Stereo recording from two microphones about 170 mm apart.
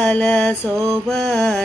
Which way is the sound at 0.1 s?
5° left (ahead or behind).